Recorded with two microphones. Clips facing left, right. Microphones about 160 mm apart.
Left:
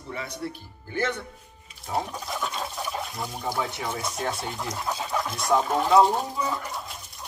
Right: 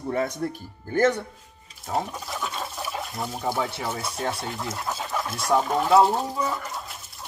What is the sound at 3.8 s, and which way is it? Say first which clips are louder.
Speech: right 1 dB; 10° right (ahead or behind).